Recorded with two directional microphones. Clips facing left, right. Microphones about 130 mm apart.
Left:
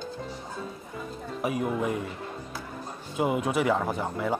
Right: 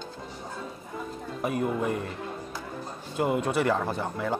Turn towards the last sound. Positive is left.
turn(degrees=5)  # may be behind; listen again after turning